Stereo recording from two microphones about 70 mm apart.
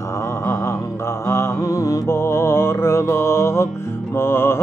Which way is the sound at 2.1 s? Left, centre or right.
Left.